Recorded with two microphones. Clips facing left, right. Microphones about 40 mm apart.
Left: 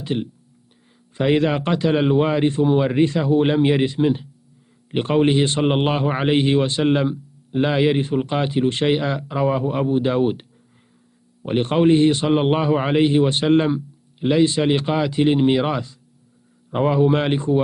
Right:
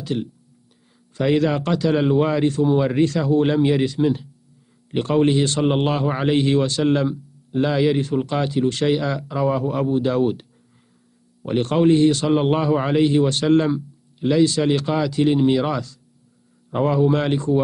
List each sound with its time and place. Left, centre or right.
0.0 s a man's voice: left
11.4 s a man's voice: left